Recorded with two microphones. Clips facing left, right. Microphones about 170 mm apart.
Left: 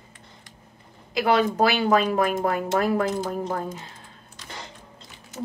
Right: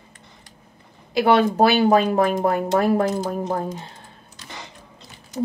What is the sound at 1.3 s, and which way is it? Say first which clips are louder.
Speech: right 4 dB; 35° right (ahead or behind).